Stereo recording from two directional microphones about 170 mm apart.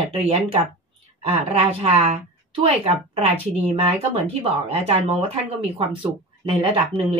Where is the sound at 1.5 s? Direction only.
35° right (ahead or behind).